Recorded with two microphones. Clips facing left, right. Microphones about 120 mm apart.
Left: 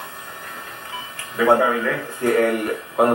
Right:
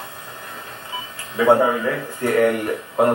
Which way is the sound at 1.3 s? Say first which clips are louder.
Right 1 dB; 15° right (ahead or behind).